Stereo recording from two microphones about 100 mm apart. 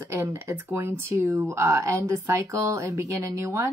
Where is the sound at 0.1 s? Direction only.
25° right (ahead or behind).